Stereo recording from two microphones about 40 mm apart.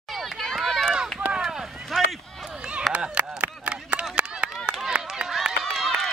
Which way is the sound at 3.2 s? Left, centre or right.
Right.